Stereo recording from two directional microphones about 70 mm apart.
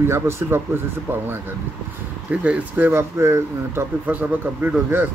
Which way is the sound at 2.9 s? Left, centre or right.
Right.